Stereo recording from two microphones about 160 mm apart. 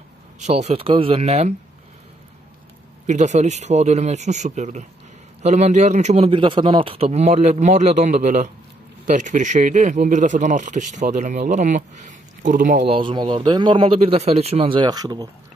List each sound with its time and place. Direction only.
0.4 s a man's voice: 45° right (ahead or behind)
3.1 s speech: 45° right (ahead or behind)
12.8 s a man's voice: 35° right (ahead or behind)